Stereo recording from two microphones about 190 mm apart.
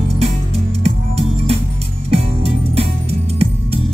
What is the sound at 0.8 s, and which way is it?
Music, 30° right (ahead or behind).